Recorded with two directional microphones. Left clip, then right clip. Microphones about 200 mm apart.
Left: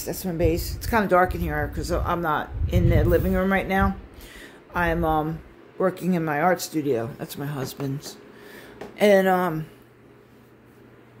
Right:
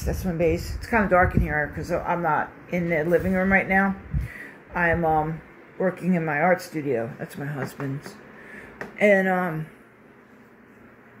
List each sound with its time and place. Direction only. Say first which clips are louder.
0.0 s speech: right 1 dB; 20° left (ahead or behind)
1.5 s speech: right 2 dB; 10° left (ahead or behind)
2.0 s speech: right 2 dB; 25° left (ahead or behind)
4.7 s speech: right 1 dB; 25° left (ahead or behind)
8.9 s speech: left 2 dB; 40° left (ahead or behind)